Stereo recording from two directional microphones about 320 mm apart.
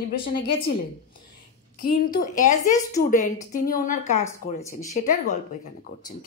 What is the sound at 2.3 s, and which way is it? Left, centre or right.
A woman's voice, left.